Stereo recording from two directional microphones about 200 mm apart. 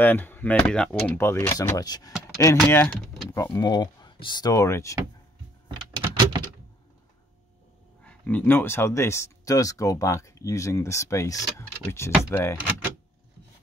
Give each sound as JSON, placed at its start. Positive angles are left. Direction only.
{"t": 0.0, "sound": "speech", "side_deg": 10}
{"t": 2.5, "sound": "speech", "side_deg": 10}
{"t": 5.9, "sound": "typing", "side_deg": -20}
{"t": 8.0, "sound": "speech", "side_deg": 5}